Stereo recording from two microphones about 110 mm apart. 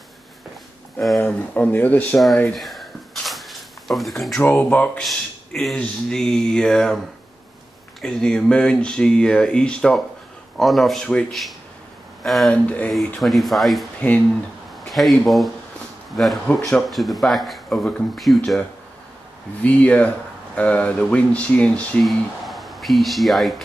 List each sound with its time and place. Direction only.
1.2 s speech: 15° left (ahead or behind)
2.5 s a sound: centre (ahead or behind)
4.4 s speech: 15° left (ahead or behind)
5.0 s speech: centre (ahead or behind)
8.0 s speech: 5° left (ahead or behind)
12.9 s speech: centre (ahead or behind)
13.9 s speech: 15° left (ahead or behind)
14.9 s speech: centre (ahead or behind)
16.5 s speech: 10° left (ahead or behind)
16.9 s speech: centre (ahead or behind)
19.6 s speech: 15° left (ahead or behind)
22.0 s speech: centre (ahead or behind)